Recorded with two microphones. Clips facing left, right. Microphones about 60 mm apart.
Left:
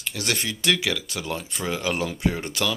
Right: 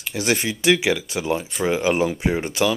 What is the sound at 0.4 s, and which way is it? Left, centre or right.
Speech, centre.